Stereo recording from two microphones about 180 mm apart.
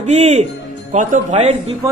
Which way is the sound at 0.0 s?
40° right (ahead or behind).